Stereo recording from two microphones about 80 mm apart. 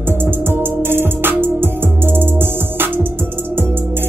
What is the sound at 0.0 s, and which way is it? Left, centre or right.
Music, right.